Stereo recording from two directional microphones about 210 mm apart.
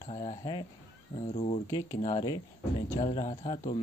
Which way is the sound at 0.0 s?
25° left (ahead or behind).